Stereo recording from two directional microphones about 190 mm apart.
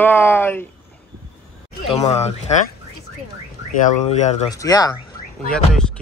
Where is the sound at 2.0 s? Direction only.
35° left (ahead or behind).